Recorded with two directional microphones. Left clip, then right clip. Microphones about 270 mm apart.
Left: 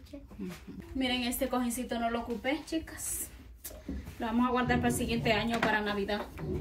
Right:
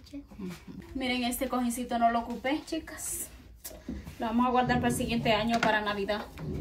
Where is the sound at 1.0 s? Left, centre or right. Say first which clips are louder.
Right 1 dB; right.